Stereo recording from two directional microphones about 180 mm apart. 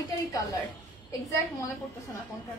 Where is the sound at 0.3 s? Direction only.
20° left (ahead or behind).